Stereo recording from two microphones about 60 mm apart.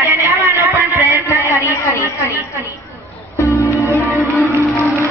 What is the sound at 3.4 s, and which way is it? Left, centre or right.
Music, left.